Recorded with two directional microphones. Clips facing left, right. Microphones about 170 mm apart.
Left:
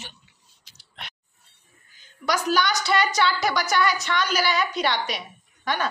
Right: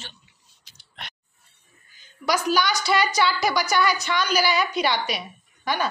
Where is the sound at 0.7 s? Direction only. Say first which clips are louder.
Right 1 dB; 5° left (ahead or behind).